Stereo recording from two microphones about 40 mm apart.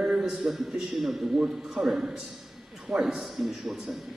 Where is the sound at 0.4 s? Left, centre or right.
Centre.